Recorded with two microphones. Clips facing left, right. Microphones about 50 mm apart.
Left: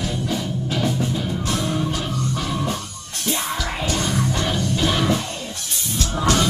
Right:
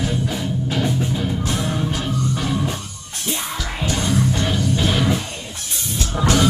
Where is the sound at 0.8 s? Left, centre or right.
Centre.